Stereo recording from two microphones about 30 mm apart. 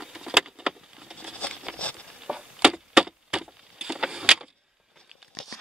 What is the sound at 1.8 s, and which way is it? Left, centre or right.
Patter, left.